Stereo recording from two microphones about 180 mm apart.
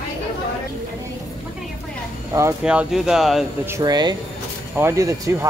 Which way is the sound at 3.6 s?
20° right (ahead or behind).